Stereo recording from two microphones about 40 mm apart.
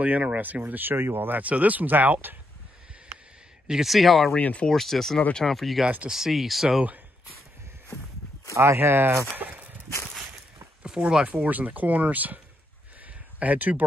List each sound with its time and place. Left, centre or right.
0.0 s speech: right
0.8 s speech: right
1.4 s speech: right
3.8 s speech: centre
4.4 s speech: left
4.6 s speech: centre
6.0 s speech: centre
8.7 s speech: right
9.4 s walk: right
11.0 s speech: right
11.4 s speech: right
13.4 s speech: right